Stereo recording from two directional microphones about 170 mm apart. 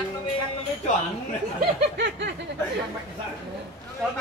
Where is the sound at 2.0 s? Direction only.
90° right.